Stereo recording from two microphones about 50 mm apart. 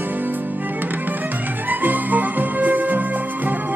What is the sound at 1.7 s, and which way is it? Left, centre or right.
Music, right.